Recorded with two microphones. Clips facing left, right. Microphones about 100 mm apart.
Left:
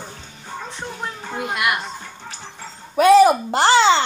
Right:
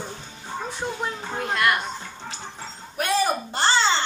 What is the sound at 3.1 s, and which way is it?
Speech, 90° left.